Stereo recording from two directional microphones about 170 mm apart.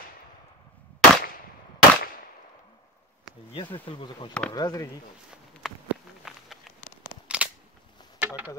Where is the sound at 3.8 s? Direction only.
30° left (ahead or behind).